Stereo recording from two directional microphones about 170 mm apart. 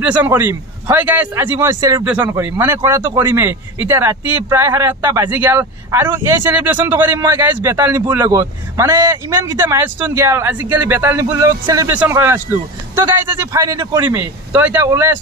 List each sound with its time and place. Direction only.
0.0 s speech: 10° right (ahead or behind)